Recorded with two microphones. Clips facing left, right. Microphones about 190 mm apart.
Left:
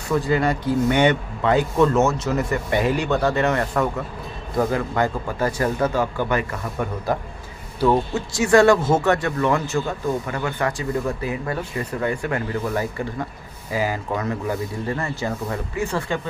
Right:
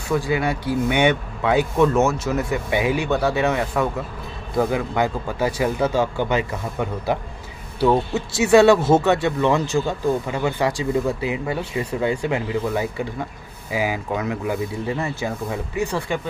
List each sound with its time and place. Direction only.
0.1 s a man's voice: 5° right (ahead or behind)
5.9 s speech: 25° right (ahead or behind)
8.5 s speech: 20° right (ahead or behind)